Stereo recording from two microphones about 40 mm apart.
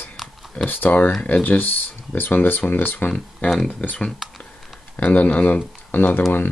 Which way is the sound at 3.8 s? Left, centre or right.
Left.